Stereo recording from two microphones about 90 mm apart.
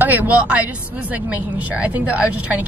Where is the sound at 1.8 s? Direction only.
15° right (ahead or behind).